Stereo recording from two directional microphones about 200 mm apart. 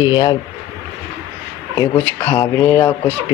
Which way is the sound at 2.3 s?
15° left (ahead or behind).